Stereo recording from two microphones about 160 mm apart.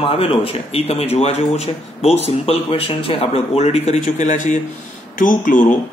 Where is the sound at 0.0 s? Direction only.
35° left (ahead or behind).